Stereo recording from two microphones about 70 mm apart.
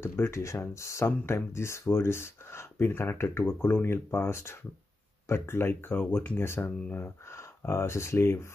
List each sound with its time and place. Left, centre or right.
0.0 s speech: left